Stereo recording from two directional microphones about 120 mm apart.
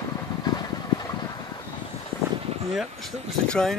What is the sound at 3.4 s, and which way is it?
Speech, 5° left (ahead or behind).